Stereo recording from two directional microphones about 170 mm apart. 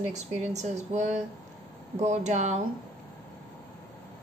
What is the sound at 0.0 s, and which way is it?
A woman's voice, 45° right (ahead or behind).